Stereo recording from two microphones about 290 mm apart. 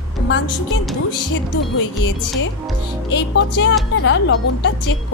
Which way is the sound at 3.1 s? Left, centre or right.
Left.